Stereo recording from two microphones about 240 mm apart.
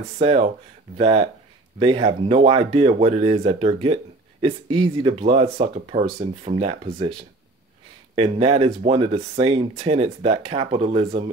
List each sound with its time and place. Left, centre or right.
0.2 s speech: right
8.2 s speech: right